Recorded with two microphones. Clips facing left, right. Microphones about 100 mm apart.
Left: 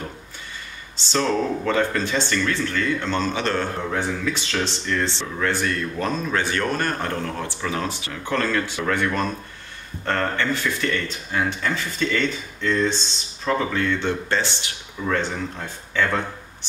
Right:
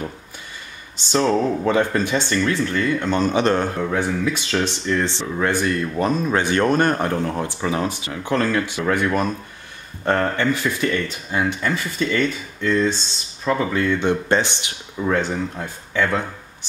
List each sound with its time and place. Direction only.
1.1 s speech: 25° right (ahead or behind)